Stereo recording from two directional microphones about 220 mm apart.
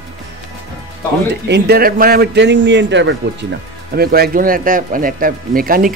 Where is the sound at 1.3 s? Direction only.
50° right (ahead or behind).